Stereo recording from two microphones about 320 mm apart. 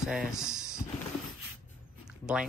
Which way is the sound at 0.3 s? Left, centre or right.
Centre.